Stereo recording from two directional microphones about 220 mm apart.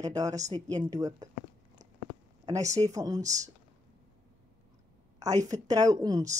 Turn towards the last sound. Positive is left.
turn(degrees=-15)  # may be behind; listen again after turning